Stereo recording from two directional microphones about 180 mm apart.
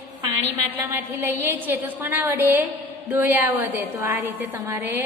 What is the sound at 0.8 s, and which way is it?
A woman's voice, 10° right (ahead or behind).